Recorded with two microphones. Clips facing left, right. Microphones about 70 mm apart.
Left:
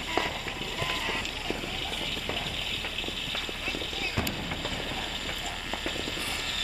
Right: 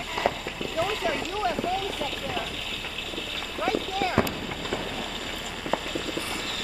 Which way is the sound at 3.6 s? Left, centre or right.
Right.